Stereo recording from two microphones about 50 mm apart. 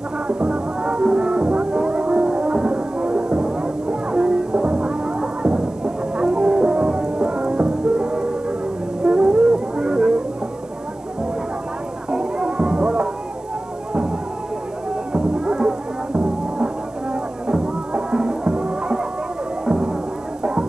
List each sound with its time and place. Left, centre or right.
0.3 s music: right
12.1 s music: centre
14.9 s music: centre